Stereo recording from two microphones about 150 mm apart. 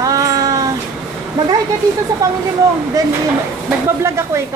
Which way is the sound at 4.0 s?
20° right (ahead or behind).